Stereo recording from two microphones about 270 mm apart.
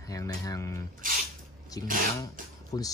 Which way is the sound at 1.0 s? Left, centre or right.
Right.